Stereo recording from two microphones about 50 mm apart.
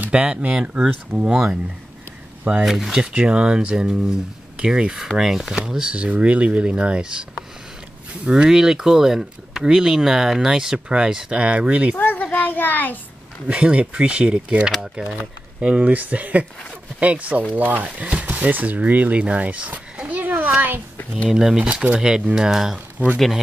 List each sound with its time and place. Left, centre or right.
0.1 s speech: centre
2.6 s speech: centre
3.0 s speech: centre
8.5 s speech: centre; by 12.0 s right
12.0 s a sound: left
13.5 s speech: right
21.3 s speech: centre